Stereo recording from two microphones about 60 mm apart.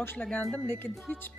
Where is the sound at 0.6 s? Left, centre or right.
Left.